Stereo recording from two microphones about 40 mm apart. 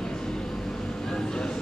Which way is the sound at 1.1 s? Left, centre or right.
Centre.